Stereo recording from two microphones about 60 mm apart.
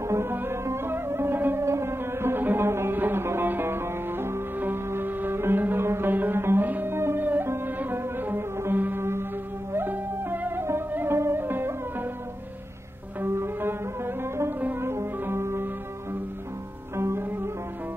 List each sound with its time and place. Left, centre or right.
0.1 s music: right
1.6 s music: right
11.1 s music: right
13.2 s music: right
16.9 s music: right